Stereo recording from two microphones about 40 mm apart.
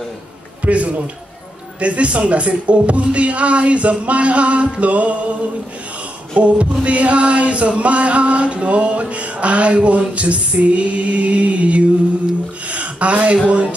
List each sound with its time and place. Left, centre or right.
0.6 s a man's voice: right
1.8 s music: right
6.3 s music: right
12.6 s a sound: right
13.5 s music: right